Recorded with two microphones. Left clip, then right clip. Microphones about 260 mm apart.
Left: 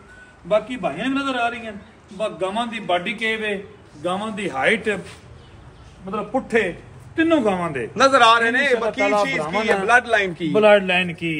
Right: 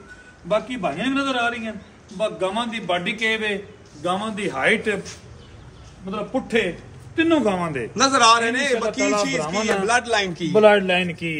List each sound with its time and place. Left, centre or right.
0.5 s a man's voice: centre
6.0 s a man's voice: centre
10.6 s a man's voice: left